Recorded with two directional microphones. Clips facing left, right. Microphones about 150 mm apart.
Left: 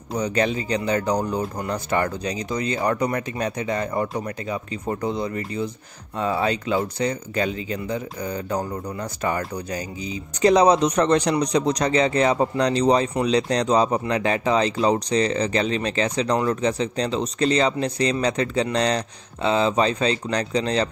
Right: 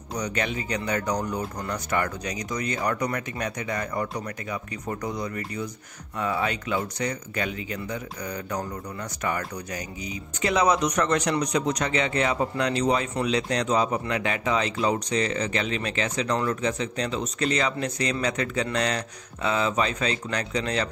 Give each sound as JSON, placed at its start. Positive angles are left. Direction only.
{"t": 0.1, "sound": "speech", "side_deg": 30}